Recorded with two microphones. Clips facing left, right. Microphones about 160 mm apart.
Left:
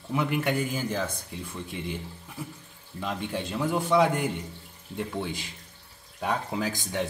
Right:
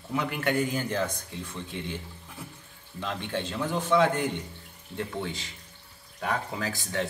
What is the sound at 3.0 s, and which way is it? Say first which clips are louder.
Speech: left 1 dB; 15° left (ahead or behind).